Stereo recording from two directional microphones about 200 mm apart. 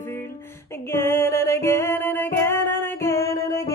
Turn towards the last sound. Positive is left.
turn(degrees=15)  # may be behind; listen again after turning